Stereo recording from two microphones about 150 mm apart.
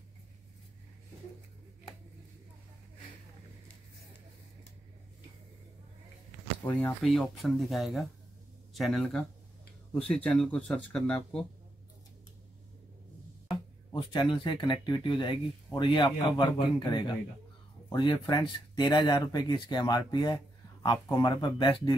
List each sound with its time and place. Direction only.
6.6 s speech: 10° left (ahead or behind)
7.1 s speech: centre (ahead or behind)
13.5 s speech: 30° left (ahead or behind)